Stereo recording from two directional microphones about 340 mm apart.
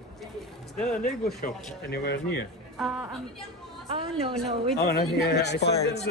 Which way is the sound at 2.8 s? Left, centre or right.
Centre.